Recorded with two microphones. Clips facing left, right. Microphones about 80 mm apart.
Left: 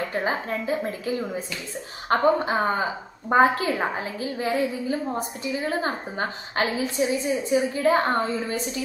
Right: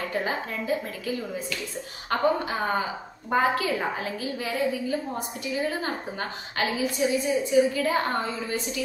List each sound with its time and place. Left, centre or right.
0.1 s a woman's voice: left